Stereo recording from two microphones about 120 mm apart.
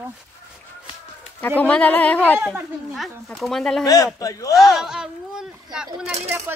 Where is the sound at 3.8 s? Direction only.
30° left (ahead or behind).